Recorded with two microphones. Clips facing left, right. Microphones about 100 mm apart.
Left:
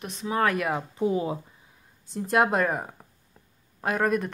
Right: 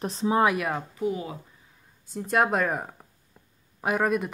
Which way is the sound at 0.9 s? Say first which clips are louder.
Left 4 dB; 30° left (ahead or behind).